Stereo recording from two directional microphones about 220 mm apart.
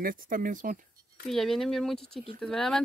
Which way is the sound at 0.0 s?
40° right (ahead or behind).